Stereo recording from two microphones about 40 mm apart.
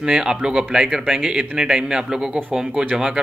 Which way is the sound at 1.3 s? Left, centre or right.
Right.